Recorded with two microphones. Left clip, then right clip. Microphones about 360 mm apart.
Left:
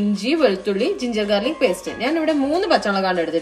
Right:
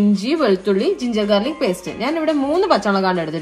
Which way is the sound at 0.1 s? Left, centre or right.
Centre.